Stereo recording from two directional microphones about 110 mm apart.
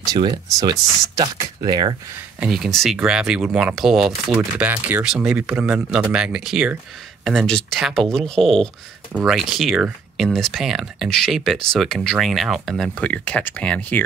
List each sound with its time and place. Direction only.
0.0 s speech: 40° right (ahead or behind)
2.4 s speech: centre (ahead or behind)
4.6 s speech: 15° right (ahead or behind); by 13.0 s centre (ahead or behind)
13.0 s speech: 15° left (ahead or behind)